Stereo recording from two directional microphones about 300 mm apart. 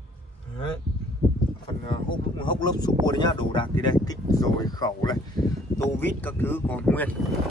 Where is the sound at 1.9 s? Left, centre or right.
Centre.